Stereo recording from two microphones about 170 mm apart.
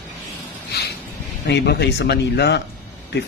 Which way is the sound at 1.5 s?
80° left.